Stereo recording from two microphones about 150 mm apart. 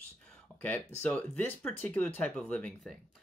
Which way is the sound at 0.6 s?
10° left (ahead or behind).